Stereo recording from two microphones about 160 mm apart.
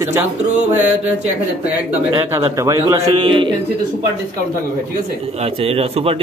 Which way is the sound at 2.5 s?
20° right (ahead or behind).